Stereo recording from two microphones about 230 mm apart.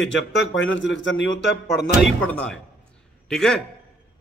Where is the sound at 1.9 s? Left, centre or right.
Centre.